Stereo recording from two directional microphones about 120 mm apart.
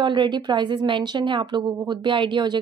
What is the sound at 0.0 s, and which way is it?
A woman's voice, 40° right (ahead or behind).